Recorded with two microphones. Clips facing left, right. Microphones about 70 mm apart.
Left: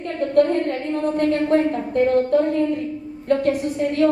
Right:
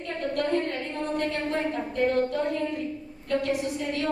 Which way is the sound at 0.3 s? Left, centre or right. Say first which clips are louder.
Left 9 dB; left.